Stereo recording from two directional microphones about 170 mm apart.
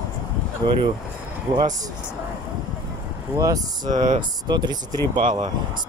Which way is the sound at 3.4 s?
20° right (ahead or behind).